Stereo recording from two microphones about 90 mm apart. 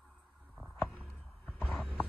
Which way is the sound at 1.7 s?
10° left (ahead or behind).